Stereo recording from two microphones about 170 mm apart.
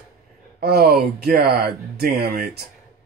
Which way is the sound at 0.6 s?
65° right (ahead or behind).